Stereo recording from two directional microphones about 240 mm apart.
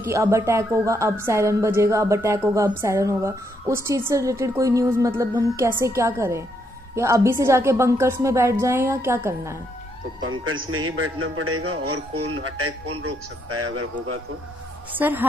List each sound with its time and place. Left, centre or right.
0.0 s a woman's voice: centre
10.4 s a man's voice: right
15.0 s a woman's voice: centre